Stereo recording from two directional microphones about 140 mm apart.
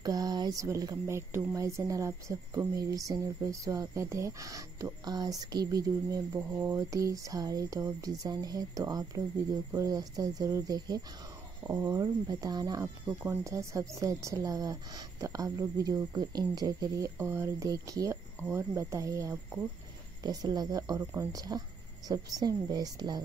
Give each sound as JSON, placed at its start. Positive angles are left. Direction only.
{"t": 0.0, "sound": "speech", "side_deg": -30}
{"t": 6.3, "sound": "speech", "side_deg": -15}
{"t": 13.0, "sound": "speech", "side_deg": -10}